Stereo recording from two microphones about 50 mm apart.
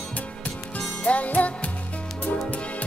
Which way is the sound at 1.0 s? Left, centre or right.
Left.